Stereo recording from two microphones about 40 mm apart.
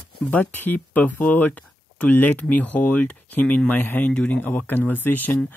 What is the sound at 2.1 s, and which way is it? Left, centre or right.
Speech, left.